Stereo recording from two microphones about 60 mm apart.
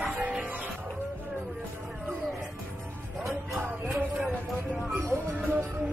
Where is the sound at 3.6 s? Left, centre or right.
Right.